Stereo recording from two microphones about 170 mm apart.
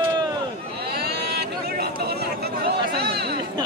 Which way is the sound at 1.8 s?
65° right (ahead or behind).